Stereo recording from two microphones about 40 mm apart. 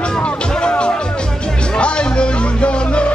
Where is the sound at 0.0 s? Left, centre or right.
Left.